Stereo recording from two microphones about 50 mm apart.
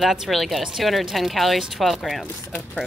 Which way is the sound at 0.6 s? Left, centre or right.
Centre.